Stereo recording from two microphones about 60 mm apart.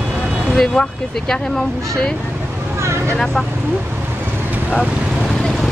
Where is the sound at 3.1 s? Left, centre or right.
Centre.